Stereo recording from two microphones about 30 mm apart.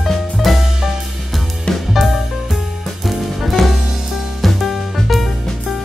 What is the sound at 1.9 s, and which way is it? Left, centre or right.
Music, centre.